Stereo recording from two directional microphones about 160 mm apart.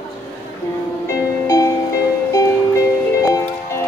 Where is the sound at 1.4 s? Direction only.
20° left (ahead or behind).